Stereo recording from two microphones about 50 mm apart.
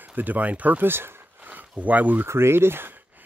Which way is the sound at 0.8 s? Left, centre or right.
Right.